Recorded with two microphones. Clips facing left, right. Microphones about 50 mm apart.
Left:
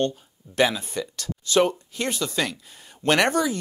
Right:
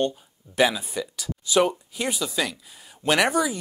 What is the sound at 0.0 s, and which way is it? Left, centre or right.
Speech, centre.